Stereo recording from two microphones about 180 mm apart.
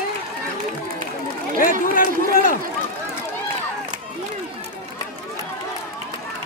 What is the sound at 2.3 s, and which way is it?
Run, 50° left (ahead or behind).